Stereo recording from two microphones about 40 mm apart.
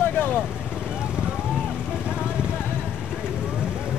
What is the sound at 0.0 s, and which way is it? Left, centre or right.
Vehicle, left.